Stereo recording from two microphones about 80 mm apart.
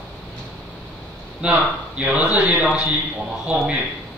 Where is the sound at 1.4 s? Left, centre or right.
Centre.